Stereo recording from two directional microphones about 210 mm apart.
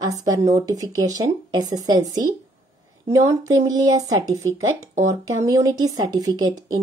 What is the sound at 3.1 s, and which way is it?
Speech, 15° right (ahead or behind).